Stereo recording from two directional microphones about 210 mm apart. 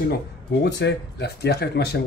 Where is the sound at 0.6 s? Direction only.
55° left (ahead or behind).